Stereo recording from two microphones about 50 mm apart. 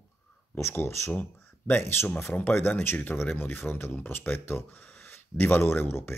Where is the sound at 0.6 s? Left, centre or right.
Left.